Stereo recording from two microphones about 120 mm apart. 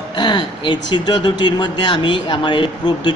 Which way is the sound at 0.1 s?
40° left (ahead or behind).